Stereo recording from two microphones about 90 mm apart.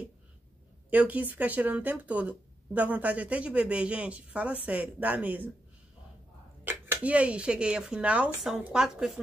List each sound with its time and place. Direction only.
0.8 s speech: 20° right (ahead or behind)
6.6 s speech: 20° right (ahead or behind); by 9.2 s 5° right (ahead or behind)